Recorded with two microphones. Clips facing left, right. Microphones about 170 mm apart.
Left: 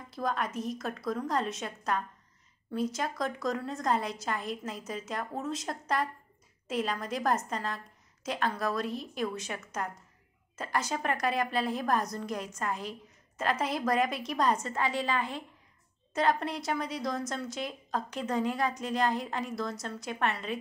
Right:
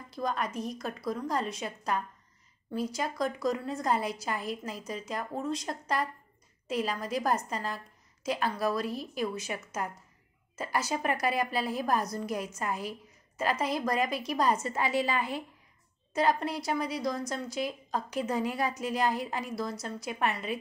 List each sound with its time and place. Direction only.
0.1 s a woman's voice: centre (ahead or behind)